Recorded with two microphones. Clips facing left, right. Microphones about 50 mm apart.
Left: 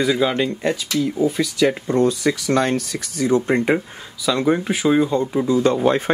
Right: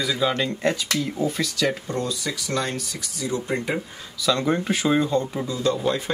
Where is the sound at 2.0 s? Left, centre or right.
Left.